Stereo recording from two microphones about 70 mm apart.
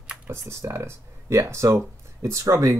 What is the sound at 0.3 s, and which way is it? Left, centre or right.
Speech, right.